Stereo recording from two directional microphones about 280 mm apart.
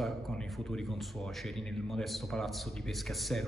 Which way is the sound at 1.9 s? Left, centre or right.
Centre.